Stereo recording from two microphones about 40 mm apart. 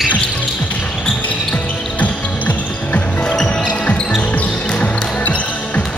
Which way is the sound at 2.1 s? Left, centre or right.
Left.